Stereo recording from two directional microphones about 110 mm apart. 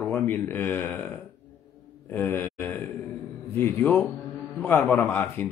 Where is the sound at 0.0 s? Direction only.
15° left (ahead or behind).